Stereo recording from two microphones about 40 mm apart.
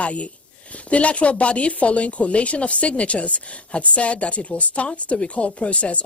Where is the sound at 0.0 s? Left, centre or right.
Left.